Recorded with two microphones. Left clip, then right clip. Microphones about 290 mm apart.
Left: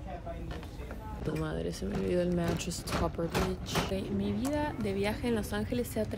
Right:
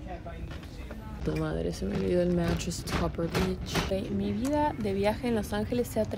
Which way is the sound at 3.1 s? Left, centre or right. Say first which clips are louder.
Right 2 dB; right.